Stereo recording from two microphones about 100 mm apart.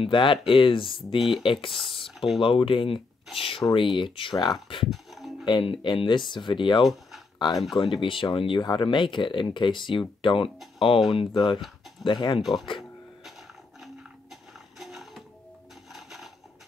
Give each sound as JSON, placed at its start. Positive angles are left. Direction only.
{"t": 0.0, "sound": "speech", "side_deg": 55}
{"t": 1.2, "sound": "speech", "side_deg": 0}
{"t": 2.4, "sound": "speech", "side_deg": 60}
{"t": 3.9, "sound": "speech", "side_deg": 55}
{"t": 4.8, "sound": "music", "side_deg": 0}
{"t": 5.4, "sound": "speech", "side_deg": 55}
{"t": 6.8, "sound": "speech", "side_deg": 0}
{"t": 7.3, "sound": "speech", "side_deg": 50}
{"t": 12.4, "sound": "speech", "side_deg": 0}
{"t": 14.3, "sound": "music", "side_deg": 0}
{"t": 15.9, "sound": "a sound", "side_deg": 0}